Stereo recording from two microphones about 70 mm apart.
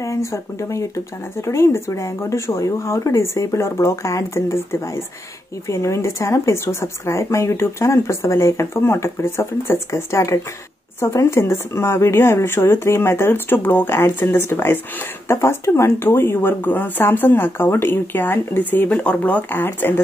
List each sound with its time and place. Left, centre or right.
0.0 s speech: left
19.5 s speech: left